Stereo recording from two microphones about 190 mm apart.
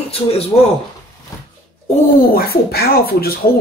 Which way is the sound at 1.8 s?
40° left (ahead or behind).